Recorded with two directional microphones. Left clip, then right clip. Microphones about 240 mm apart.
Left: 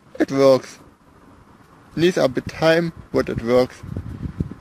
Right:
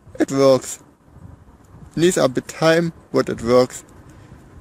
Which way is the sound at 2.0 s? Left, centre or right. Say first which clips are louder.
Right 1 dB; centre.